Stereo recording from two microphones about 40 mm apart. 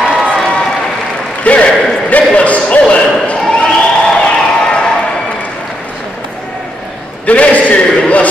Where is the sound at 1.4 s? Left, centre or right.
Left.